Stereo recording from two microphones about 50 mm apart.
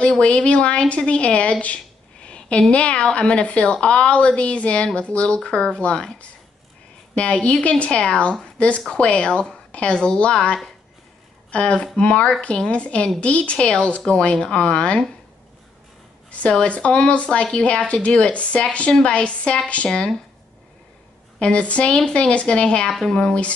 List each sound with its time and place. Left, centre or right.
0.2 s a woman's voice: left
2.2 s a sound: left
2.7 s a woman's voice: left
16.3 s a sound: left
16.6 s a woman's voice: left
21.4 s a woman's voice: left
22.8 s a woman's voice: centre